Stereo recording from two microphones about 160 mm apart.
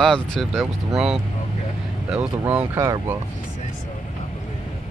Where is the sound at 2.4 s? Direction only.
15° right (ahead or behind).